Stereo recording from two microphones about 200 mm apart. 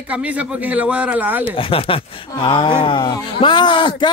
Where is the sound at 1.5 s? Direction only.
25° left (ahead or behind).